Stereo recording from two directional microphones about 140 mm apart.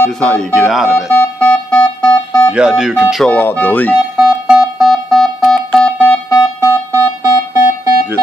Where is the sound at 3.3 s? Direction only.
10° left (ahead or behind).